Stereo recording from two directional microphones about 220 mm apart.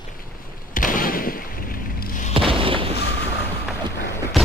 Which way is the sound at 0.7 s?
35° left (ahead or behind).